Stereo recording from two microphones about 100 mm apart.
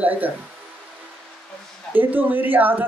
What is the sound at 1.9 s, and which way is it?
Speech, 20° right (ahead or behind).